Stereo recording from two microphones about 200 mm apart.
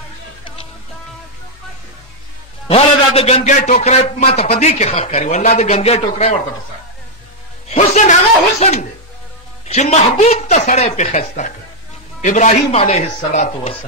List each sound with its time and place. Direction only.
2.7 s a man's voice: 30° left (ahead or behind)
7.7 s a man's voice: 35° left (ahead or behind)